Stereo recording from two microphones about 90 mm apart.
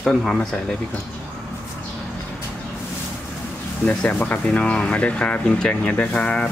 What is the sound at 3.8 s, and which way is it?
Speech, 15° left (ahead or behind).